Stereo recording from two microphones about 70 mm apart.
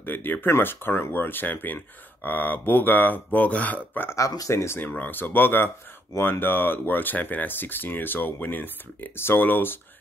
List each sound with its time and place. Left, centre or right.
0.0 s speech: left
4.5 s speech: left
4.7 s speech: left